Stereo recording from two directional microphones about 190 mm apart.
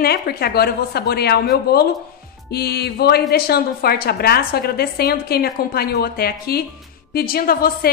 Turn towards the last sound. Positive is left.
turn(degrees=50)  # may be behind; listen again after turning